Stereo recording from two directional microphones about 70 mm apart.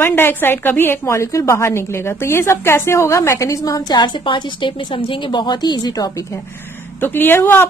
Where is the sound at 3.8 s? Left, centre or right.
Left.